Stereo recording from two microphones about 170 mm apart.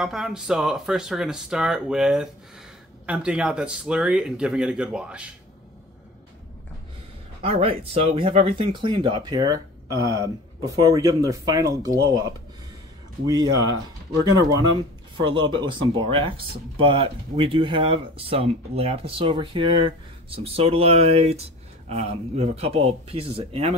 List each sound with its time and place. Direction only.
0.0 s speech: centre (ahead or behind)
7.4 s speech: 35° right (ahead or behind)
13.3 s speech: 25° right (ahead or behind)
15.2 s speech: 25° right (ahead or behind)